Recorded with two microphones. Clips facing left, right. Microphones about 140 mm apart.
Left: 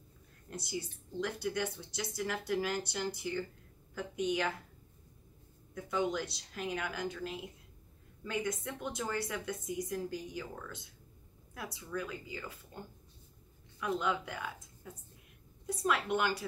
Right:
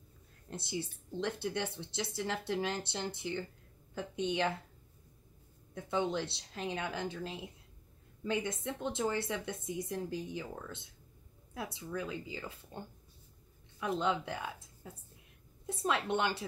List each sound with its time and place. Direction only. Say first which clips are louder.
0.5 s a woman's voice: right 1 dB; 25° right (ahead or behind)
5.8 s a woman's voice: even; 30° right (ahead or behind)